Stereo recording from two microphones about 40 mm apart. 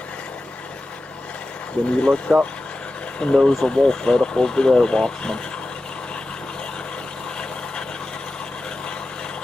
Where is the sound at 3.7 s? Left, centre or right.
Left.